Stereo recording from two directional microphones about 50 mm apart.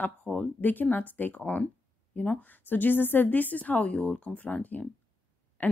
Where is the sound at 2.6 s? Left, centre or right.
Left.